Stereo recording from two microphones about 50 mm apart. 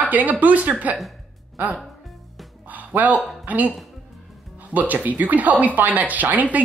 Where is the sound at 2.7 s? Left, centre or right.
Right.